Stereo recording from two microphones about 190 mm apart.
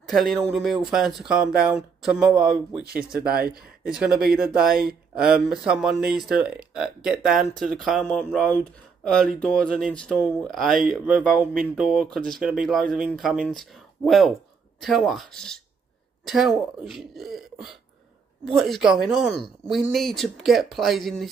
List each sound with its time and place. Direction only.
0.1 s speech: centre (ahead or behind)
3.3 s speech: 55° right (ahead or behind)
3.8 s speech: 5° right (ahead or behind)